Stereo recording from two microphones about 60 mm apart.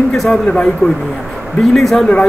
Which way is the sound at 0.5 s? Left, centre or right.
Centre.